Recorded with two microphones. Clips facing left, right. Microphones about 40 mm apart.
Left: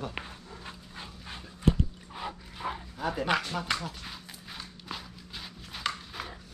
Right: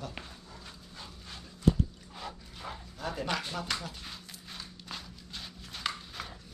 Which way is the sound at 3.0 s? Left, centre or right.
Centre.